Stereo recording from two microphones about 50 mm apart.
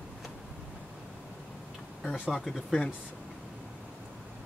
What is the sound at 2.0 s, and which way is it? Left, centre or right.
Speech, centre.